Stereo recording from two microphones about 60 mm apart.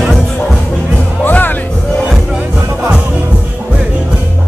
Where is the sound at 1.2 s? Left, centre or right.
Left.